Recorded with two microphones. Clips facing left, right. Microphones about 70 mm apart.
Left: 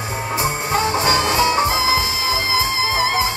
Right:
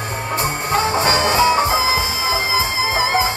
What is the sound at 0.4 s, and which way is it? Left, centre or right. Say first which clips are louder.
Music: right 1 dB; centre.